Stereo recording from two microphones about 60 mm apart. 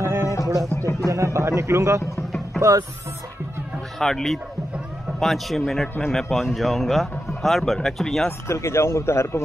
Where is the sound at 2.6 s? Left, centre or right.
Right.